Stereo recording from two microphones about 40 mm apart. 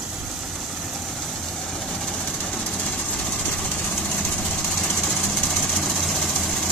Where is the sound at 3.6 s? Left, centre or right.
Left; by 6.4 s centre.